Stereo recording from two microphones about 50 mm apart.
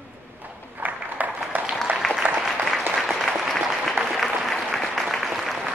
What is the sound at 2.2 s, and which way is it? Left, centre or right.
Applause, right.